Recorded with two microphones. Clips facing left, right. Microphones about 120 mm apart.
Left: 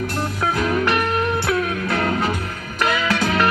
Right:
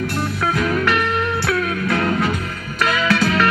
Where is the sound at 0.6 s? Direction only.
25° left (ahead or behind).